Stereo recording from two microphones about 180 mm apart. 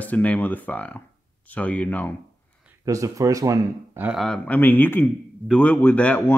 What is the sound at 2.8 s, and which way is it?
Speech, 20° right (ahead or behind).